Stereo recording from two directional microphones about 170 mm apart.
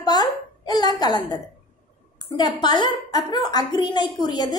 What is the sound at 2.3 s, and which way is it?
A woman's voice, 25° left (ahead or behind).